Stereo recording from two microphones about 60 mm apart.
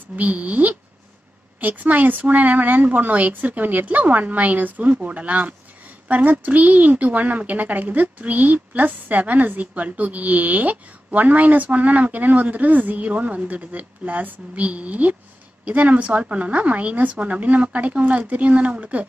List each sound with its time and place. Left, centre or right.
0.1 s a woman's voice: right